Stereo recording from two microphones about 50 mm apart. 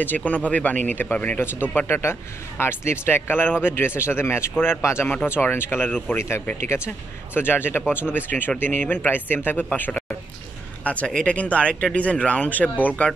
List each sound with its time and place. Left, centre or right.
0.0 s speech: left
1.9 s a man's voice: left
5.0 s a man's voice: left
6.1 s speech: left
7.3 s a man's voice: left